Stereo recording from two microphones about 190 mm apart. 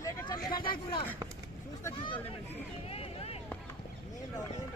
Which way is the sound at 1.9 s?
25° left (ahead or behind).